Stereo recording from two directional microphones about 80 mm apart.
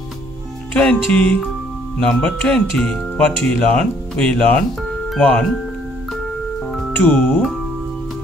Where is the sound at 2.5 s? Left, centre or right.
Centre.